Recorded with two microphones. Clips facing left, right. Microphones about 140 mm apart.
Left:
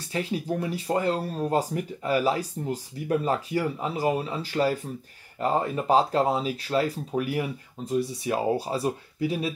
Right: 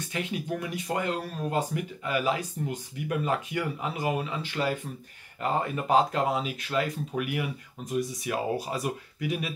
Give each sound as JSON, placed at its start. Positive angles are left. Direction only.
{"t": 0.0, "sound": "speech", "side_deg": 35}